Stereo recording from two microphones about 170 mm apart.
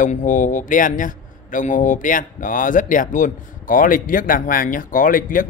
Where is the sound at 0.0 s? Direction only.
50° left (ahead or behind).